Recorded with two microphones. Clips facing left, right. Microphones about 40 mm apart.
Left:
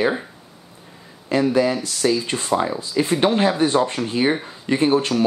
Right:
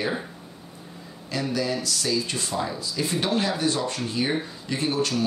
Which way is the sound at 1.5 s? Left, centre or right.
Left.